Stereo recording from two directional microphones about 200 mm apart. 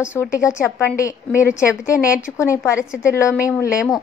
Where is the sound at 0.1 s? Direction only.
15° left (ahead or behind).